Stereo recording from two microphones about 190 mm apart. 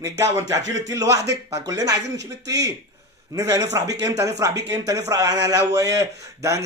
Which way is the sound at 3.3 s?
15° right (ahead or behind).